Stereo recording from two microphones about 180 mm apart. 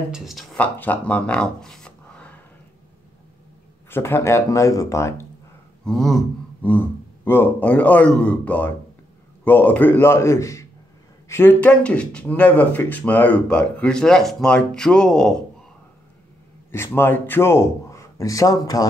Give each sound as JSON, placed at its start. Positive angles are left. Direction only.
{"t": 0.1, "sound": "speech", "side_deg": 0}
{"t": 3.9, "sound": "speech", "side_deg": 15}
{"t": 5.9, "sound": "speech", "side_deg": 0}
{"t": 16.7, "sound": "speech", "side_deg": 15}